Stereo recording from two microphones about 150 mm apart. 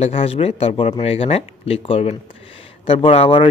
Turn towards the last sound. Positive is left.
turn(degrees=40)  # may be behind; listen again after turning